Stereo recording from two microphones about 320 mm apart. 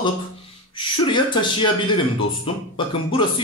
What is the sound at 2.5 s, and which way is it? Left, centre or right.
Speech, centre.